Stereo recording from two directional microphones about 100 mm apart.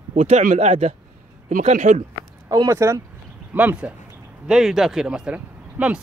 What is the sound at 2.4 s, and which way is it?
Speech, 35° right (ahead or behind).